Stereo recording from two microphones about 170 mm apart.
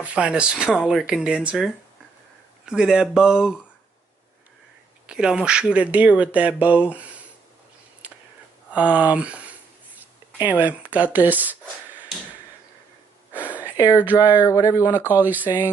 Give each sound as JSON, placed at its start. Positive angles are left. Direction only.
{"t": 0.0, "sound": "speech", "side_deg": -5}
{"t": 5.0, "sound": "speech", "side_deg": -5}
{"t": 6.9, "sound": "a sound", "side_deg": -10}
{"t": 8.0, "sound": "whispering", "side_deg": -10}
{"t": 8.7, "sound": "a sound", "side_deg": -10}
{"t": 13.3, "sound": "a sound", "side_deg": -10}
{"t": 13.8, "sound": "speech", "side_deg": -10}
{"t": 14.4, "sound": "speech", "side_deg": 15}
{"t": 15.0, "sound": "speech", "side_deg": -10}